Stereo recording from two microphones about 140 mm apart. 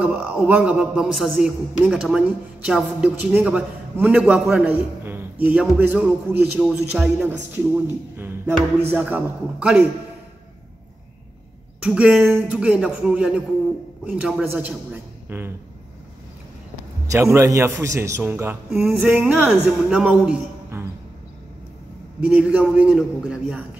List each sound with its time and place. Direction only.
0.0 s a man's voice: 10° right (ahead or behind)
11.8 s a man's voice: 5° right (ahead or behind)
17.1 s a man's voice: 20° right (ahead or behind)
20.7 s music: 20° right (ahead or behind)
22.2 s a man's voice: 10° right (ahead or behind)